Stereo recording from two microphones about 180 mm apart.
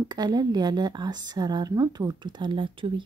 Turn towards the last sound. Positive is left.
turn(degrees=-25)  # may be behind; listen again after turning